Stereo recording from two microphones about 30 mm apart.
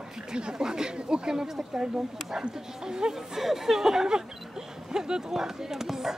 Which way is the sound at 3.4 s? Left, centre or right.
Centre.